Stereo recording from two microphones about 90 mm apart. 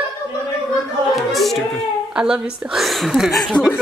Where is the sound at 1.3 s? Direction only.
Centre (ahead or behind).